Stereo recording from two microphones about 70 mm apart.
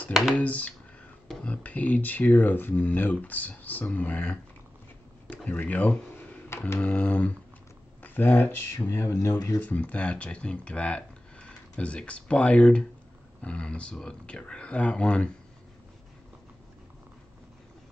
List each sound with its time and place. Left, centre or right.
0.1 s speech: centre
0.4 s speech: left
9.6 s speech: left